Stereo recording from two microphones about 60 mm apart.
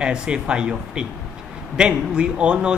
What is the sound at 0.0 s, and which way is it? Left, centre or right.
A man's voice, centre.